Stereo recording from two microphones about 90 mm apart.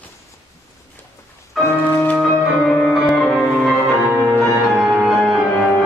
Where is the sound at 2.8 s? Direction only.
5° left (ahead or behind).